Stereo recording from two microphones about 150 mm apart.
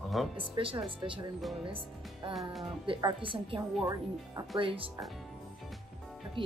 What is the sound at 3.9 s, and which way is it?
Speech, 25° right (ahead or behind).